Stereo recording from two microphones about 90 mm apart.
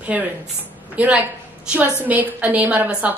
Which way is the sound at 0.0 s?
15° right (ahead or behind).